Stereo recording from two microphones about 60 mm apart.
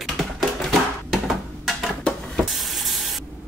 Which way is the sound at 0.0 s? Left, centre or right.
Centre.